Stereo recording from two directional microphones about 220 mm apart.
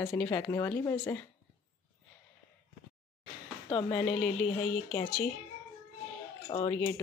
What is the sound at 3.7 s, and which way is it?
Speech, 20° left (ahead or behind).